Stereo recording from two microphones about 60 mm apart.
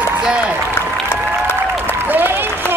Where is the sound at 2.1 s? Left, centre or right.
Right.